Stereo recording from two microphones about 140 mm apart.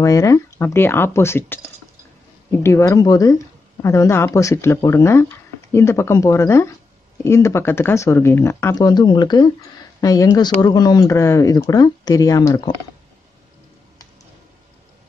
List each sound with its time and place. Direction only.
0.0 s speech: 25° left (ahead or behind)